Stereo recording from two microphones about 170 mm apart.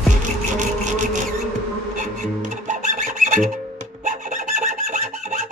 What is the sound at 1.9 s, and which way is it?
Music, 45° right (ahead or behind).